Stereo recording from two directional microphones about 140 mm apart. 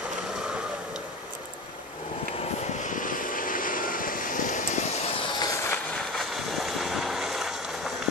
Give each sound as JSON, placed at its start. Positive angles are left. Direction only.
{"t": 2.8, "sound": "vehicle", "side_deg": 70}
{"t": 5.4, "sound": "vehicle", "side_deg": 20}
{"t": 5.9, "sound": "vehicle", "side_deg": 0}